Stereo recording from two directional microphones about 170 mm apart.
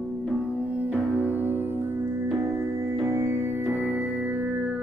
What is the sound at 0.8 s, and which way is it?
Music, 10° right (ahead or behind).